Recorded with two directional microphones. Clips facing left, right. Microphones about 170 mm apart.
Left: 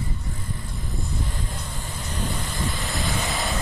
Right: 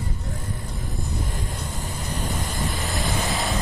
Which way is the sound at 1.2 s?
45° right (ahead or behind).